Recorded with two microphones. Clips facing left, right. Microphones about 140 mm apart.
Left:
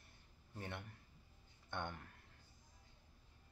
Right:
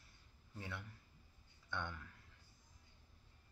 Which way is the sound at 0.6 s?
55° left (ahead or behind).